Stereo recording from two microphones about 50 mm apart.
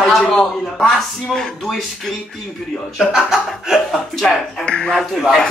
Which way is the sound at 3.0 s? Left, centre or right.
Centre.